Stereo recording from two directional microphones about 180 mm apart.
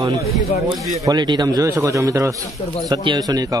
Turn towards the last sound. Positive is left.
turn(degrees=-20)  # may be behind; listen again after turning